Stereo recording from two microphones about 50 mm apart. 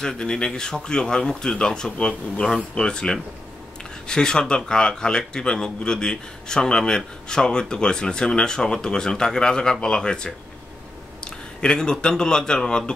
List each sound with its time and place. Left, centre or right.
0.0 s a man's voice: centre